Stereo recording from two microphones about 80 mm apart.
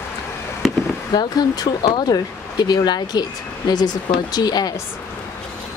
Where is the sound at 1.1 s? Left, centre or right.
Left.